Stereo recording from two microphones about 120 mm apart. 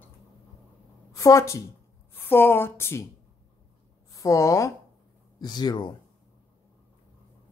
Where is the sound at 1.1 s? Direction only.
25° left (ahead or behind).